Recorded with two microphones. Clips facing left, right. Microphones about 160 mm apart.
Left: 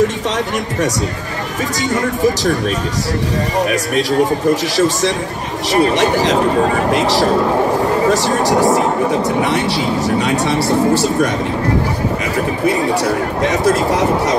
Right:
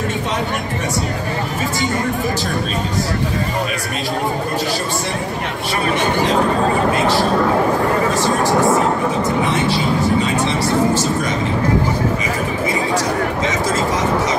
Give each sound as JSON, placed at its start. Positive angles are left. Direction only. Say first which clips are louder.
{"t": 5.7, "sound": "speech", "louder": "left 6 dB", "side_deg": 80}
{"t": 13.4, "sound": "speech", "louder": "left 4 dB", "side_deg": 65}